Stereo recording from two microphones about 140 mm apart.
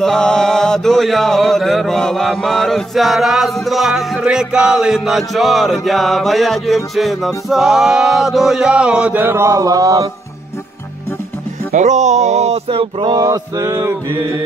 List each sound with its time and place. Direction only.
0.0 s mantra: 5° left (ahead or behind); by 10.0 s 25° right (ahead or behind)
11.7 s speech: 60° right (ahead or behind)
13.1 s male singing: 25° right (ahead or behind)